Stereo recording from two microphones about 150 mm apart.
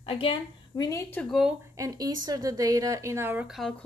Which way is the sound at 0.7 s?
25° left (ahead or behind).